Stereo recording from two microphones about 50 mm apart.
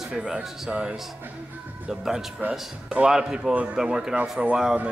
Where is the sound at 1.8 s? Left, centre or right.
Centre.